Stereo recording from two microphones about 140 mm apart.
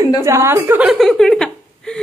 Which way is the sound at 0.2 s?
20° right (ahead or behind).